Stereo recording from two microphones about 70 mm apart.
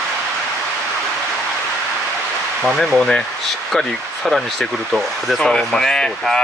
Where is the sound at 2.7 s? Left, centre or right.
Centre.